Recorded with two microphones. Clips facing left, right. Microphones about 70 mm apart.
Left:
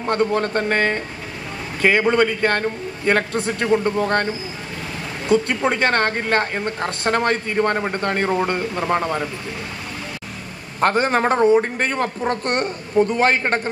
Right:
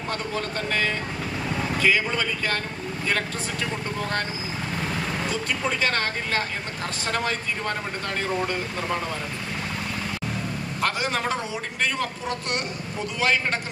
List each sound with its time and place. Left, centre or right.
0.1 s speech: left
5.6 s speech: left
10.8 s a man's voice: left